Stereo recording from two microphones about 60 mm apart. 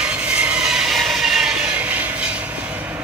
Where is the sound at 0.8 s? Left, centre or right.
Centre.